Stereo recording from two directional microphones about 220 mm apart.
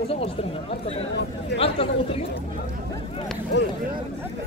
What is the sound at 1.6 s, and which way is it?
Speech, 25° left (ahead or behind).